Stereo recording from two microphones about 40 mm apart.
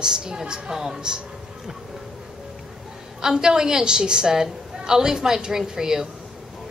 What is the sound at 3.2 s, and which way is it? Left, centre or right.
A woman's voice, centre.